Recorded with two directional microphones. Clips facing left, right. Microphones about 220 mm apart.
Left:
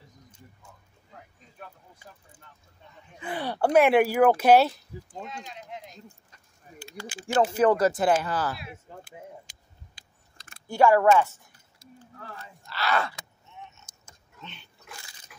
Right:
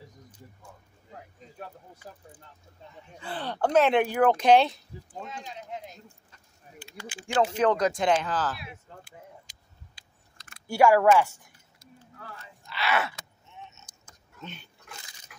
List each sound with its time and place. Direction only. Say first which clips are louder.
3.2 s speech: left 2 dB; 15° left (ahead or behind)
6.8 s speech: left 3 dB; 40° left (ahead or behind)
7.5 s speech: left 3 dB; 5° left (ahead or behind)
9.0 s vehicle: left 5 dB; 50° left (ahead or behind)
10.7 s a woman's voice: even; 10° right (ahead or behind)
12.8 s a sound: left 1 dB; 5° right (ahead or behind)
14.4 s speech: right 4 dB; 45° right (ahead or behind)